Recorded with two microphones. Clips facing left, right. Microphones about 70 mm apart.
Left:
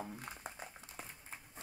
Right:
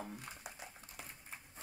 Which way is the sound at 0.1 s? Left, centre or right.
Left.